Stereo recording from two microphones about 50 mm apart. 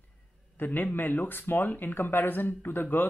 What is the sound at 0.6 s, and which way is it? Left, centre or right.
A man's voice, left.